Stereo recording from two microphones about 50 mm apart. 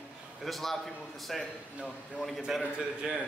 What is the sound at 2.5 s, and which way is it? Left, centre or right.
Speech, centre.